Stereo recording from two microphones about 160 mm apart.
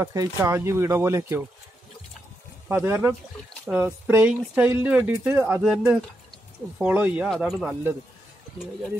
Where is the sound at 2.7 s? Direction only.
15° right (ahead or behind).